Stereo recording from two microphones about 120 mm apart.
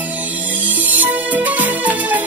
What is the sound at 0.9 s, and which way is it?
Music, 15° right (ahead or behind).